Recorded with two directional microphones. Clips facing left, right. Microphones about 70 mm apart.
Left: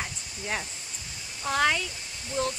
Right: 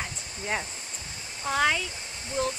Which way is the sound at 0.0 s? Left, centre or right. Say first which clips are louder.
Right 1 dB; centre.